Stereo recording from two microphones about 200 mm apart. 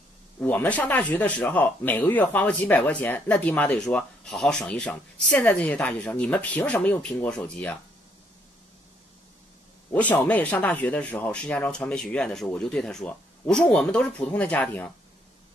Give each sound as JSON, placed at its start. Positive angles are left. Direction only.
{"t": 0.4, "sound": "speech", "side_deg": 10}
{"t": 10.2, "sound": "speech", "side_deg": 10}